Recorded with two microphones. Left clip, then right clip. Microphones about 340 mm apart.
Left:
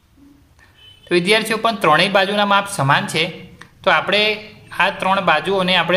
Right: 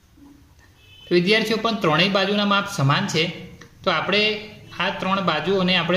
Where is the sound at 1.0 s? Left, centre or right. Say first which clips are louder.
Left 3 dB; left.